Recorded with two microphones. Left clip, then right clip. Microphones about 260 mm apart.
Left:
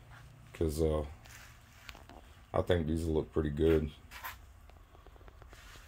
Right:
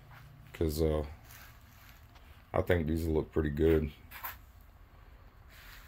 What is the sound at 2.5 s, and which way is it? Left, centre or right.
Speech, centre.